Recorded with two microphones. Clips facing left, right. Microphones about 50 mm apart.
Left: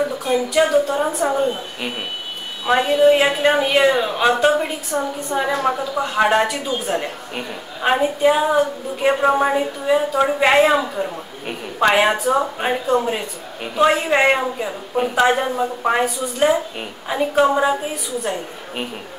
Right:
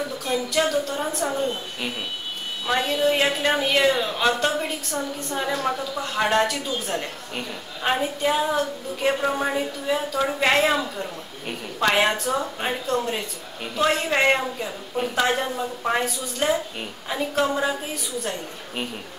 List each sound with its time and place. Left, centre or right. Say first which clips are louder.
0.0 s a woman's voice: left 6 dB; centre